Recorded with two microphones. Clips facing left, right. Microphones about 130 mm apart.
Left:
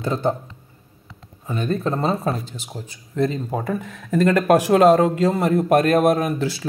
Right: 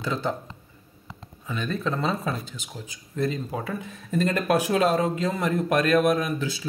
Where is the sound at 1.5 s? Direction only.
45° left (ahead or behind).